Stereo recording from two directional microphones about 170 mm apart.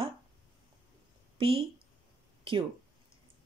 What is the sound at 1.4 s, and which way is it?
Speech, 35° right (ahead or behind).